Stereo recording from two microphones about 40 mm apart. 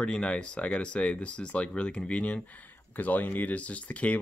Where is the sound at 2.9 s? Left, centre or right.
Left.